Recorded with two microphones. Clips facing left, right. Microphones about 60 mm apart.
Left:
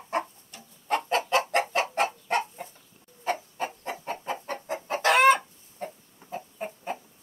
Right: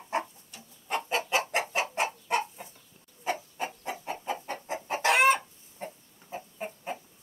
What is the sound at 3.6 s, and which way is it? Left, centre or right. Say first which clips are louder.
Chicken: left 2 dB; left.